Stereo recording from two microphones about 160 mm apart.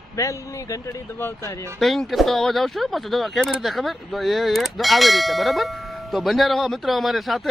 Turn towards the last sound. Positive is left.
turn(degrees=0)  # may be behind; listen again after turning